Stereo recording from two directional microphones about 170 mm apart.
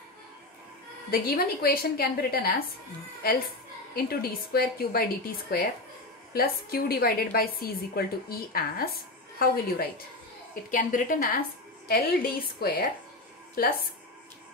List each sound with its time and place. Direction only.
1.1 s a woman's voice: 60° left (ahead or behind)